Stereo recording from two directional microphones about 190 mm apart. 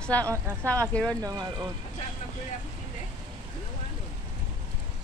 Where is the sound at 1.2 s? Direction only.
20° right (ahead or behind).